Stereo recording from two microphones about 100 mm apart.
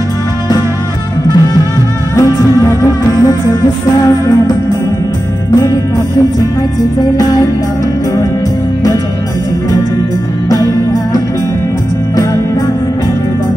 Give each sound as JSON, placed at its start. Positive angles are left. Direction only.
{"t": 2.7, "sound": "music", "side_deg": 30}
{"t": 7.2, "sound": "music", "side_deg": 40}
{"t": 10.5, "sound": "music", "side_deg": 35}